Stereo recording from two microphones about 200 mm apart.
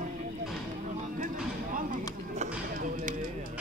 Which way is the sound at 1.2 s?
40° right (ahead or behind).